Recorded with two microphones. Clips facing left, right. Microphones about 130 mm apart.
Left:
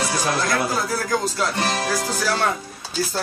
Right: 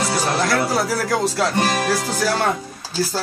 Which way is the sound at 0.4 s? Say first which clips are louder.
Right 3 dB; 75° right (ahead or behind).